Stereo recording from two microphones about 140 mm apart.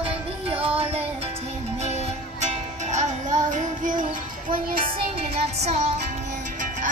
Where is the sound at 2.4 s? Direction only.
55° right (ahead or behind).